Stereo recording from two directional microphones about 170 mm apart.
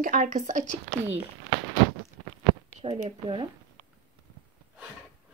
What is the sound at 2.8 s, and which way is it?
Speech, 30° right (ahead or behind).